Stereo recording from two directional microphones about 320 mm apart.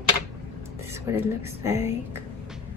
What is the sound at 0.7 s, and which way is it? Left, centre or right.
Speech, centre.